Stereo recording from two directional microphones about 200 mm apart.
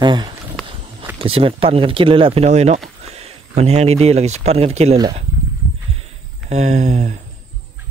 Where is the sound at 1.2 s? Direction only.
25° right (ahead or behind).